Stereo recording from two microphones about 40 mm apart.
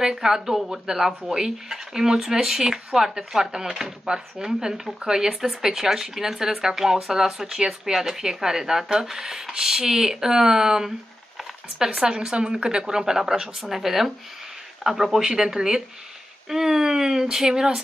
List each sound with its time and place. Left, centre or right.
0.0 s speech: centre
11.9 s speech: centre